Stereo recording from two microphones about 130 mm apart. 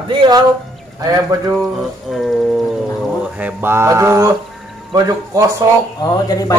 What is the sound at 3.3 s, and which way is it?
Mantra, 15° right (ahead or behind).